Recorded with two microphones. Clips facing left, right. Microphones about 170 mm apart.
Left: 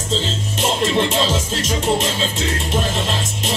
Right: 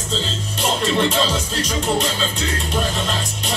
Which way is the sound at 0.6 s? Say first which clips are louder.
Left 1 dB; 25° left (ahead or behind).